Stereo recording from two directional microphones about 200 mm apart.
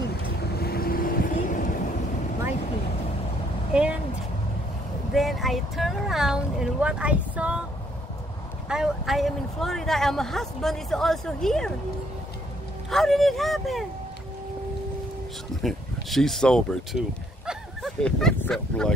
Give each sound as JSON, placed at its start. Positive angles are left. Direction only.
{"t": 0.6, "sound": "vehicle", "side_deg": 50}
{"t": 3.7, "sound": "vehicle", "side_deg": -5}
{"t": 5.1, "sound": "vehicle", "side_deg": 0}
{"t": 8.6, "sound": "speech", "side_deg": -5}
{"t": 12.9, "sound": "speech", "side_deg": 0}
{"t": 15.6, "sound": "speech", "side_deg": 0}
{"t": 17.5, "sound": "a sound", "side_deg": 0}